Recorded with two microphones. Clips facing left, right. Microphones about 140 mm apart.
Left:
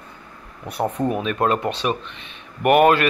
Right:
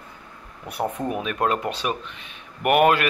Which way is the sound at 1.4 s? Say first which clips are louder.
Left 2 dB; 35° left (ahead or behind).